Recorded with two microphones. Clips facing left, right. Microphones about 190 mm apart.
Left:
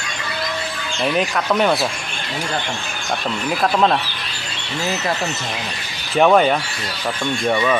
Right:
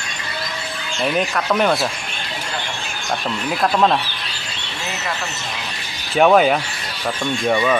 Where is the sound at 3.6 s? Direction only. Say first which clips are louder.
Even; centre (ahead or behind).